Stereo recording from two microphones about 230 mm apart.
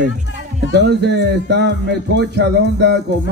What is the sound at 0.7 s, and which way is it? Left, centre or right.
Speech, right.